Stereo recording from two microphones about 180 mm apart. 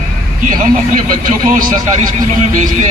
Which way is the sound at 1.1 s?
50° right (ahead or behind).